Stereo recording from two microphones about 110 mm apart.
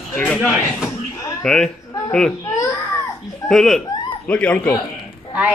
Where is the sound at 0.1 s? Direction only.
10° left (ahead or behind).